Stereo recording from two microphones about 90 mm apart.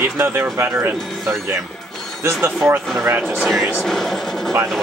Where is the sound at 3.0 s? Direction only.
25° right (ahead or behind).